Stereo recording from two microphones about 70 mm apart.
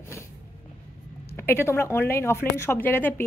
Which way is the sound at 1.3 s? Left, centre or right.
Left.